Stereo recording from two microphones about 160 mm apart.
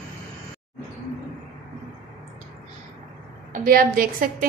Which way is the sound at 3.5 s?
60° right (ahead or behind).